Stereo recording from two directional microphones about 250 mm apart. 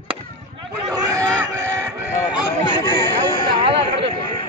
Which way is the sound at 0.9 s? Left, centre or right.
Centre.